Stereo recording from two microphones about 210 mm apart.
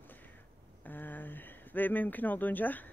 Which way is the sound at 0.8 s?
10° left (ahead or behind).